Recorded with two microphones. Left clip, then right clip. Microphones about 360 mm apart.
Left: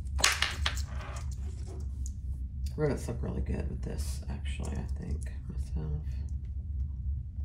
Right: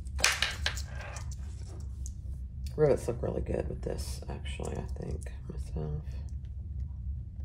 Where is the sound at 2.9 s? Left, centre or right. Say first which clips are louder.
Right 8 dB; centre.